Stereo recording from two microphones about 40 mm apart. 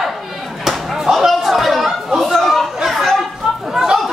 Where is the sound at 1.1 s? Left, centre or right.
Centre.